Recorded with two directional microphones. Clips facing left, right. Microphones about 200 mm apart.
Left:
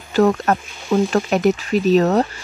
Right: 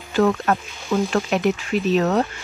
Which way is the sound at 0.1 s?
40° left (ahead or behind).